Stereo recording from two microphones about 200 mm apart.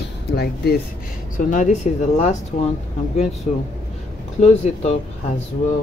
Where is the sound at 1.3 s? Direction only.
40° left (ahead or behind).